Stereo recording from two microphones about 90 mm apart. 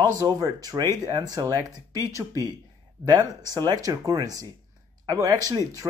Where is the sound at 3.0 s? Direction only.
45° right (ahead or behind).